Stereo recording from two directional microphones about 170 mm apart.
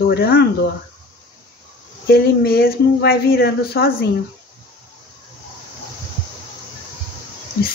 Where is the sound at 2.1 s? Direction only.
65° left (ahead or behind).